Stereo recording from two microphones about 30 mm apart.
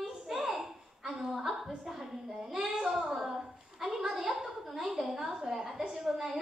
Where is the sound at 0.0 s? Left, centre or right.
Centre.